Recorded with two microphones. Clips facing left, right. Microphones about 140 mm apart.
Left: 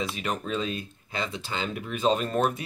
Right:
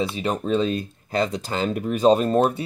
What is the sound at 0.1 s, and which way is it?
Speech, 30° right (ahead or behind).